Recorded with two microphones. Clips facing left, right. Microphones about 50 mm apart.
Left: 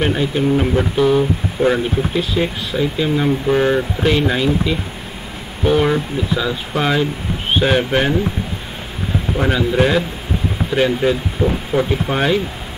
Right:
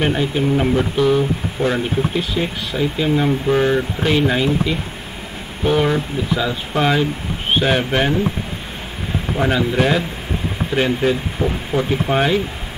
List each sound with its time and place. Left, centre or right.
0.0 s speech: centre
1.6 s speech: left
2.1 s speech: centre
5.9 s speech: centre
6.8 s speech: centre
9.4 s speech: centre
11.4 s speech: right
12.1 s speech: centre